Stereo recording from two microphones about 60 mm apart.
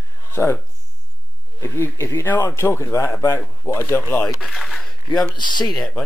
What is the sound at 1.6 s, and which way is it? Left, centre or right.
Speech, left.